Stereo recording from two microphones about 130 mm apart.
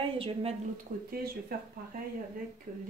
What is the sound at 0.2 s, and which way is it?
Speech, 50° right (ahead or behind).